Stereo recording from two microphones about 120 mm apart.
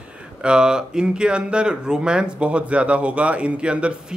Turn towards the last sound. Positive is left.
turn(degrees=-10)  # may be behind; listen again after turning